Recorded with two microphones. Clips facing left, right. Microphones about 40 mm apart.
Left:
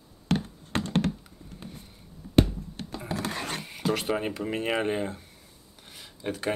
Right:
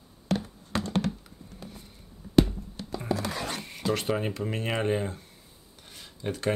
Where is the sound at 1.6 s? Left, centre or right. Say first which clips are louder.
Left 1 dB; left.